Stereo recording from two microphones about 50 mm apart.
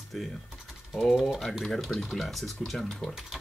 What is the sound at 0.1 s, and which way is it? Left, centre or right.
Speech, centre.